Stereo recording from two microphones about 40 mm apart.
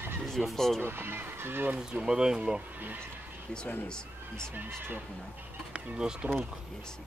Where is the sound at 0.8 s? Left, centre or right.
Right.